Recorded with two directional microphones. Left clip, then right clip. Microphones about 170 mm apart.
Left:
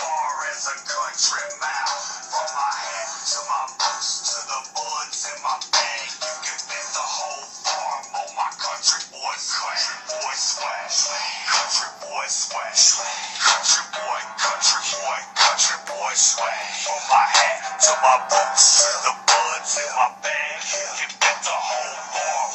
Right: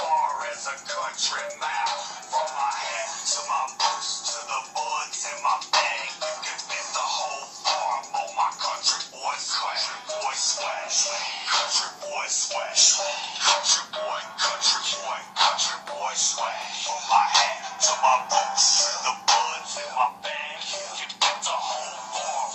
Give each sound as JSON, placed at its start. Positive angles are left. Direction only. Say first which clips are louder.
{"t": 2.3, "sound": "music", "louder": "left 2 dB", "side_deg": -5}
{"t": 4.2, "sound": "music", "louder": "left 3 dB", "side_deg": 10}
{"t": 9.5, "sound": "music", "louder": "left 4 dB", "side_deg": 30}
{"t": 10.2, "sound": "music", "louder": "left 2 dB", "side_deg": 50}